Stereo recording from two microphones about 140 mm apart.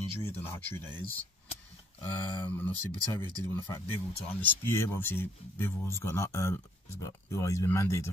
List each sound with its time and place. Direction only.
0.2 s speech: 15° left (ahead or behind)
2.0 s speech: 15° left (ahead or behind)